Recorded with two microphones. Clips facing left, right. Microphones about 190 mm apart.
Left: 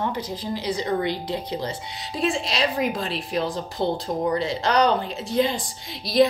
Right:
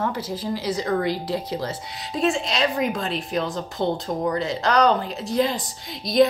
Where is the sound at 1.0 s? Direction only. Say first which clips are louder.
Right 2 dB; centre (ahead or behind).